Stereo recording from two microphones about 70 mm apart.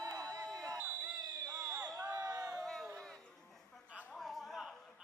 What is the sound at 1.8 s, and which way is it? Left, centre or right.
Crowd, right.